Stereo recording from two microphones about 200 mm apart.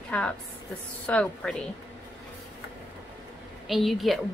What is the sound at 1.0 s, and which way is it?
Speech, 5° left (ahead or behind).